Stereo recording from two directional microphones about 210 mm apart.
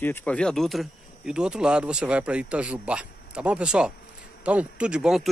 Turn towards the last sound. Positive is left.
turn(degrees=-5)  # may be behind; listen again after turning